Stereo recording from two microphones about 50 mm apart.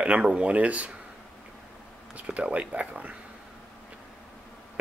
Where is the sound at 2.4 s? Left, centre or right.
Right.